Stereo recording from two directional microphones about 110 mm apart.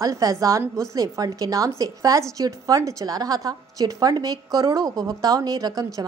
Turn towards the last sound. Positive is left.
turn(degrees=-35)  # may be behind; listen again after turning